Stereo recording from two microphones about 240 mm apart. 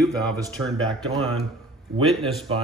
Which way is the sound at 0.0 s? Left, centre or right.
Centre.